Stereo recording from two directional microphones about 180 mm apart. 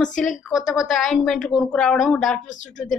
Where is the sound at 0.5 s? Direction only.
Centre (ahead or behind).